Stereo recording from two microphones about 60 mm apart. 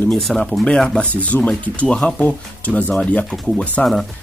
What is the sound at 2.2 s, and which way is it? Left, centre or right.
Speech, left.